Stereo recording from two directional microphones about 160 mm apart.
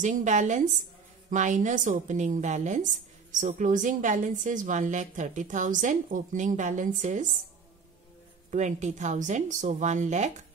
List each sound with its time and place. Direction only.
0.0 s a woman's voice: 50° right (ahead or behind)
8.5 s a woman's voice: 50° right (ahead or behind)